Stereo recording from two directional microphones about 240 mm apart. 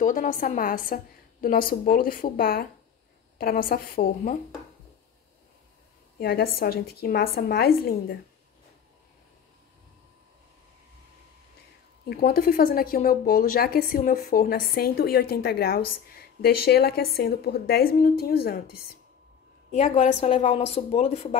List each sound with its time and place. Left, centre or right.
0.0 s a woman's voice: left
6.1 s a woman's voice: left
12.1 s a woman's voice: left